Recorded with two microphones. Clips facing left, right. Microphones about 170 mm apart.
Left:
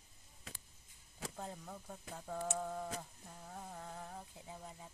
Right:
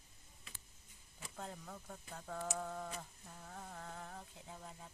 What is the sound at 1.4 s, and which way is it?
Speech, 10° left (ahead or behind).